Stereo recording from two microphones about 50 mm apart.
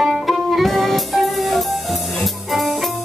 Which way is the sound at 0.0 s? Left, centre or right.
Centre.